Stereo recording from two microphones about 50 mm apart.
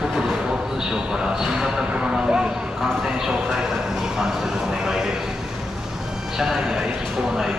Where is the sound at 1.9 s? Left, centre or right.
Centre.